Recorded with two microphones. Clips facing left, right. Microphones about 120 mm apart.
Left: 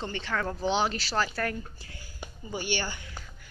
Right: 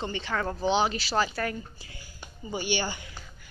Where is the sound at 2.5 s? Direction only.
10° right (ahead or behind).